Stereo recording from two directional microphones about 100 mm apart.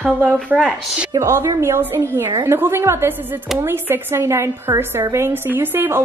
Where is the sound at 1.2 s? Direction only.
30° right (ahead or behind).